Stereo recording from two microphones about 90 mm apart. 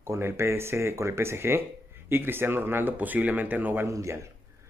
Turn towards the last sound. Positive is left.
turn(degrees=-35)  # may be behind; listen again after turning